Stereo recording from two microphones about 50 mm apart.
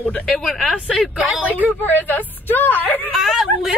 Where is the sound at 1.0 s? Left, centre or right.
Centre.